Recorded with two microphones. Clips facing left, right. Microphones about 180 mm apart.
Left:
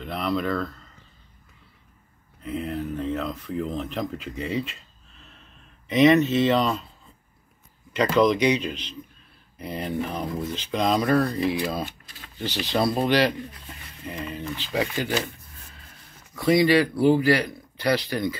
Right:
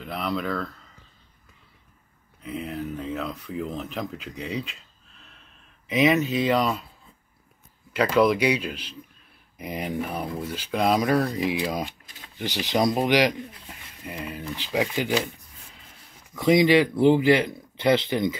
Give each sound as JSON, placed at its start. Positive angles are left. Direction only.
{"t": 0.0, "sound": "speech", "side_deg": 0}
{"t": 2.4, "sound": "speech", "side_deg": 0}
{"t": 7.9, "sound": "speech", "side_deg": -10}
{"t": 16.3, "sound": "a man's voice", "side_deg": -20}